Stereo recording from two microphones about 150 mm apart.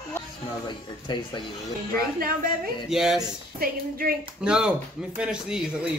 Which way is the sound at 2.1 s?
75° right (ahead or behind).